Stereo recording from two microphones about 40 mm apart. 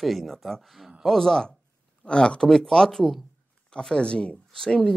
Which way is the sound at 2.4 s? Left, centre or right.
Centre.